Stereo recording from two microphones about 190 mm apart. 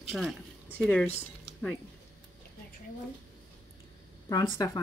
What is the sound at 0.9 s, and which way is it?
Speech, 5° left (ahead or behind).